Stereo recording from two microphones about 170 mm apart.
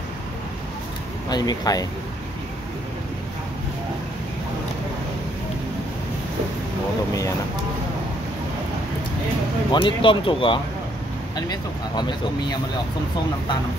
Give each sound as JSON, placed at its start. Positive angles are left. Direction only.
{"t": 1.3, "sound": "speech", "side_deg": 25}
{"t": 9.7, "sound": "speech", "side_deg": 25}